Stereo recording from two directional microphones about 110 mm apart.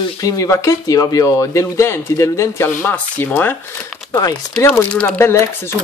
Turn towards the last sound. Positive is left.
turn(degrees=25)  # may be behind; listen again after turning